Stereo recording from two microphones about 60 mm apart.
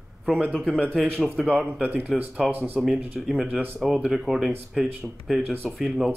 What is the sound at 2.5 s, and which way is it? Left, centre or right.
Speech, right.